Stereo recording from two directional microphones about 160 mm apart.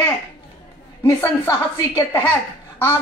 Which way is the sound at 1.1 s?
20° left (ahead or behind).